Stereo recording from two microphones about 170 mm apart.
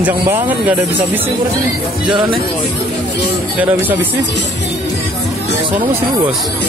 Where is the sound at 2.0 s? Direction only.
30° right (ahead or behind).